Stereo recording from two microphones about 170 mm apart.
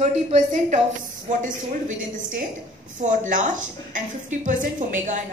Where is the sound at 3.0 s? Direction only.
45° right (ahead or behind).